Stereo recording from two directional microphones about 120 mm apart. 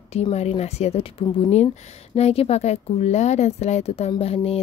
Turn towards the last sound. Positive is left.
turn(degrees=55)  # may be behind; listen again after turning